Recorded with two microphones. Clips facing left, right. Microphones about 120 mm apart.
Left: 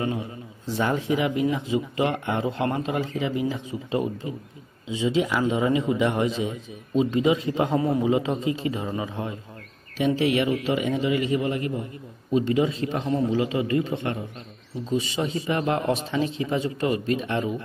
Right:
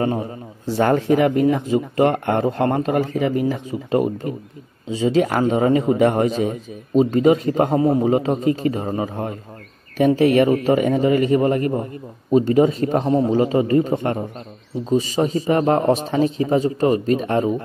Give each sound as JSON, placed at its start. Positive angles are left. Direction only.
{"t": 0.0, "sound": "a man's voice", "side_deg": -40}
{"t": 7.7, "sound": "a man's voice", "side_deg": -35}